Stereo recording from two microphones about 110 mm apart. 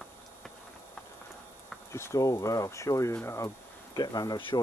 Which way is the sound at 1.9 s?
25° left (ahead or behind).